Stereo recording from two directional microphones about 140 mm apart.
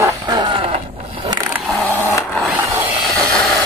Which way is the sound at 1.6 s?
Centre (ahead or behind).